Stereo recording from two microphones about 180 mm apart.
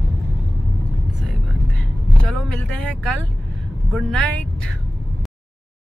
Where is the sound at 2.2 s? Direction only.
5° left (ahead or behind).